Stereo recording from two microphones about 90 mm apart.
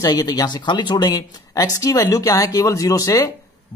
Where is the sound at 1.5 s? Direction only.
40° left (ahead or behind).